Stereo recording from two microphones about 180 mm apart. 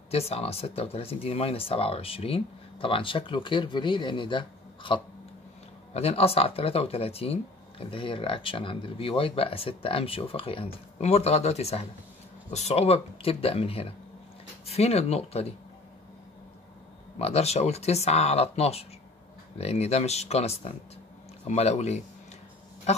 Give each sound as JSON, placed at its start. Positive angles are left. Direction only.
{"t": 0.1, "sound": "speech", "side_deg": 35}
{"t": 17.2, "sound": "speech", "side_deg": 35}
{"t": 22.9, "sound": "duck", "side_deg": 35}